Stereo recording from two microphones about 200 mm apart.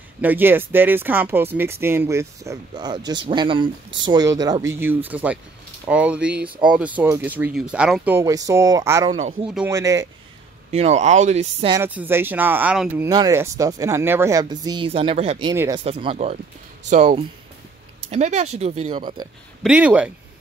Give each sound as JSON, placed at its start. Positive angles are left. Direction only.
{"t": 0.2, "sound": "speech", "side_deg": -10}
{"t": 9.1, "sound": "speech", "side_deg": -35}
{"t": 9.7, "sound": "speech", "side_deg": -15}
{"t": 10.7, "sound": "speech", "side_deg": -35}
{"t": 11.7, "sound": "speech", "side_deg": -10}
{"t": 15.5, "sound": "speech", "side_deg": -15}
{"t": 15.8, "sound": "speech", "side_deg": -30}
{"t": 19.6, "sound": "speech", "side_deg": -5}